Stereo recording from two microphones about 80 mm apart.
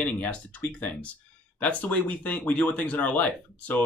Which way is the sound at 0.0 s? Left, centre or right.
Centre.